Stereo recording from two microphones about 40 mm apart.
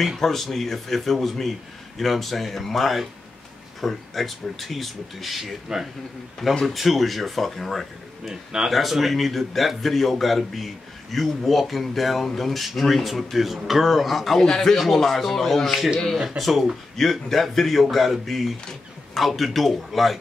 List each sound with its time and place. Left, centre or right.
0.2 s a man's voice: centre
5.7 s speech: right
6.6 s a man's voice: centre
8.5 s speech: centre
8.7 s a man's voice: centre
16.9 s a man's voice: centre